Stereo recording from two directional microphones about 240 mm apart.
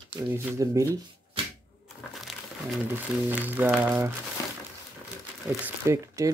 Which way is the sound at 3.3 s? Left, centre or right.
Centre.